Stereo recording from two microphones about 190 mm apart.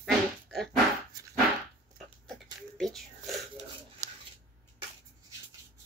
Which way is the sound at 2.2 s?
Centre (ahead or behind).